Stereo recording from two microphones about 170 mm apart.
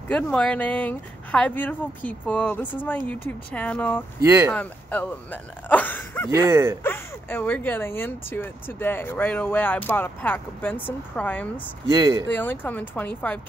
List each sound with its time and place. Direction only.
0.1 s speech: 5° left (ahead or behind)
4.2 s speech: 15° right (ahead or behind)
4.5 s speech: 10° left (ahead or behind)
6.3 s speech: 15° right (ahead or behind)
6.8 s speech: 10° left (ahead or behind)
11.9 s speech: 25° right (ahead or behind)
12.4 s speech: 10° left (ahead or behind)